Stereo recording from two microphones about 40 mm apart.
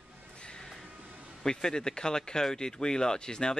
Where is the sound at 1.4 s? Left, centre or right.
Centre.